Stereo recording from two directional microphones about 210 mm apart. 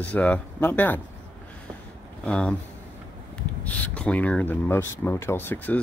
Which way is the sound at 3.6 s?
5° left (ahead or behind).